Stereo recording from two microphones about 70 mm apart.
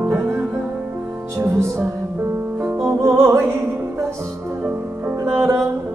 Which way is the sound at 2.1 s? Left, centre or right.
Right.